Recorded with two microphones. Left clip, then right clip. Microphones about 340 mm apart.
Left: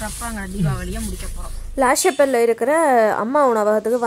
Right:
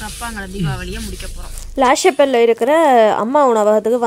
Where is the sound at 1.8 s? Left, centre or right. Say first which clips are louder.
Right 4 dB; centre.